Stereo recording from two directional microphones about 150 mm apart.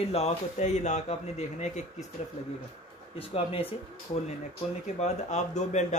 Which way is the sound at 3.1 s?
40° left (ahead or behind).